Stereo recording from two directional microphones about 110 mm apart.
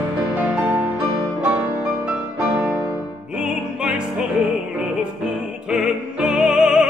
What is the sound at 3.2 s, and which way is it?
Music, 10° right (ahead or behind).